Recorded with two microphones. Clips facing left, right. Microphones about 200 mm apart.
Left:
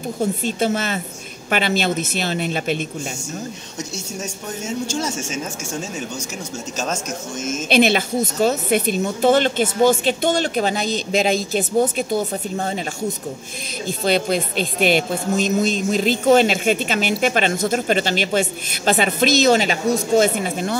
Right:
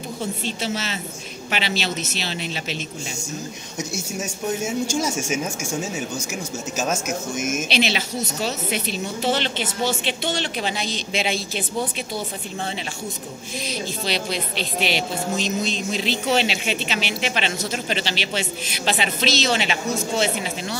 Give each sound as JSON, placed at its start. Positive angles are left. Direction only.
{"t": 0.2, "sound": "speech", "side_deg": 45}
{"t": 3.9, "sound": "speech", "side_deg": -10}
{"t": 6.8, "sound": "speech", "side_deg": -5}
{"t": 7.6, "sound": "speech", "side_deg": 50}
{"t": 13.8, "sound": "speech", "side_deg": 50}